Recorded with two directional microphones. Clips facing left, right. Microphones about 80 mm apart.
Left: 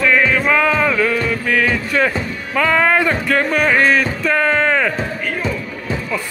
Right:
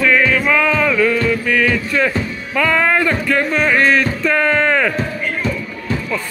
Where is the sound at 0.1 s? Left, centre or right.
Centre.